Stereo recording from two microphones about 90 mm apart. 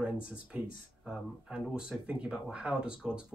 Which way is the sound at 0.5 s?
10° right (ahead or behind).